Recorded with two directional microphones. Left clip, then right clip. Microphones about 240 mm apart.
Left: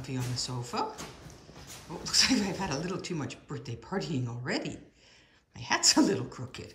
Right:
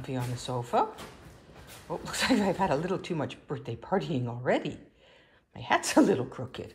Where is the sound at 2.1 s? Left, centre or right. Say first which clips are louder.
Left 1 dB; centre.